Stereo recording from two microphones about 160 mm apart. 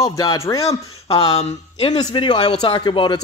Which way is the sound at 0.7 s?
40° left (ahead or behind).